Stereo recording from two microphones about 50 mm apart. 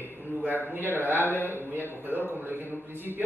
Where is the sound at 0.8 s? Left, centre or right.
Left.